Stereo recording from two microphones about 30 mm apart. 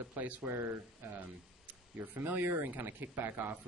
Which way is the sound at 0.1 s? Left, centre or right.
Right.